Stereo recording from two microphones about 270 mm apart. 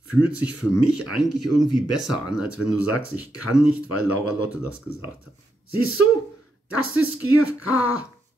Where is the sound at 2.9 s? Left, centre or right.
Left.